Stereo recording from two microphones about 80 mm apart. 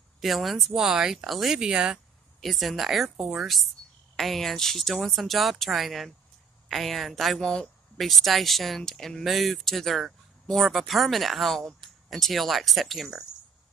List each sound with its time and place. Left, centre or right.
0.2 s speech: centre